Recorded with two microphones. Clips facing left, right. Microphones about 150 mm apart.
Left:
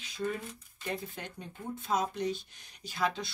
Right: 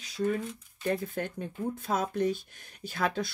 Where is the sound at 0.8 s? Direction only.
50° right (ahead or behind).